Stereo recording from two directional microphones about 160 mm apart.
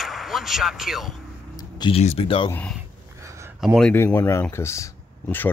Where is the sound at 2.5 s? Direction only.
10° left (ahead or behind).